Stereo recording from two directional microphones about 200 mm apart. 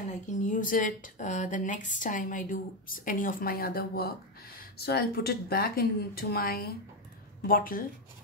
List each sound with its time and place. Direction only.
0.3 s speech: 40° left (ahead or behind)